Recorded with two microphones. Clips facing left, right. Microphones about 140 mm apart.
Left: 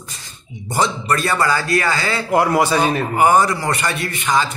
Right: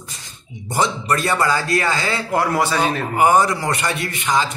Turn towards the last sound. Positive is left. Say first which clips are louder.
# left 1 dB
turn(degrees=-20)  # may be behind; listen again after turning